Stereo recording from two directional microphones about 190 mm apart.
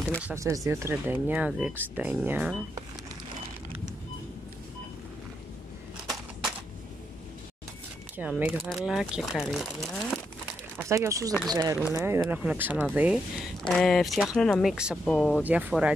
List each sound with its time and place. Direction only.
0.2 s speech: 15° right (ahead or behind)
8.2 s speech: 10° right (ahead or behind)
10.9 s speech: 15° right (ahead or behind)
15.1 s speech: 10° left (ahead or behind)
15.4 s speech: 10° right (ahead or behind)